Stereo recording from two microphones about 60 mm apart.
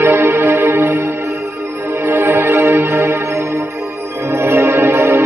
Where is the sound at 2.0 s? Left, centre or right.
Right.